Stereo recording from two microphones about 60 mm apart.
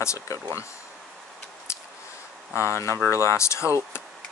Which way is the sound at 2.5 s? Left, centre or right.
Left.